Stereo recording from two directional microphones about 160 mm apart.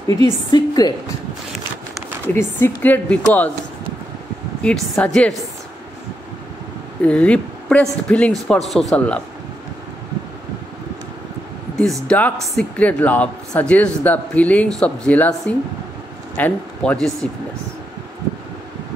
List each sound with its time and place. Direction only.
0.0 s a woman's voice: 25° left (ahead or behind)
2.2 s a man's voice: 15° left (ahead or behind)
4.6 s a man's voice: 5° left (ahead or behind)
7.0 s a man's voice: 10° left (ahead or behind)
11.8 s a man's voice: 5° left (ahead or behind)